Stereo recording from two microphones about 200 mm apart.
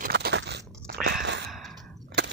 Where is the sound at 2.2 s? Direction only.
60° right (ahead or behind).